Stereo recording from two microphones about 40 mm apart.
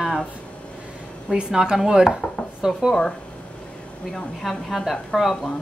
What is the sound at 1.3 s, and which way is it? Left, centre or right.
Speech, centre.